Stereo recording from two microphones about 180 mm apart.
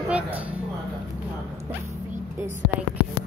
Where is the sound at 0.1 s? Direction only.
10° right (ahead or behind).